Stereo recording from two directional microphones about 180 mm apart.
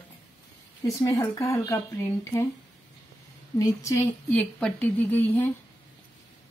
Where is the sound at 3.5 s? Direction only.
15° left (ahead or behind).